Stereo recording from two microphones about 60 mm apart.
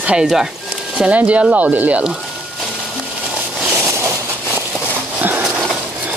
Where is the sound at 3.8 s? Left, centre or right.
Right.